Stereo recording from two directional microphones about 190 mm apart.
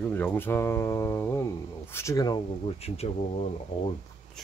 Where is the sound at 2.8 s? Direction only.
30° left (ahead or behind).